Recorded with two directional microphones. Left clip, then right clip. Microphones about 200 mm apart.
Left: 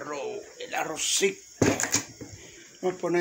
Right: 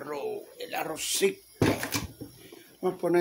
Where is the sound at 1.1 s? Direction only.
10° right (ahead or behind).